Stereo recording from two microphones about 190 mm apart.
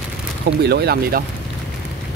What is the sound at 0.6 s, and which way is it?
Speech, 60° right (ahead or behind).